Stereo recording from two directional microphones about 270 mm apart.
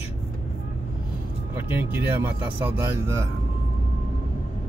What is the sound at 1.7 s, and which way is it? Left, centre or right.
Speech, centre.